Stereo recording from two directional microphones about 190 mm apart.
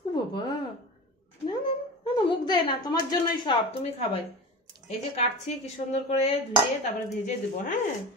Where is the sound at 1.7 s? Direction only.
25° left (ahead or behind).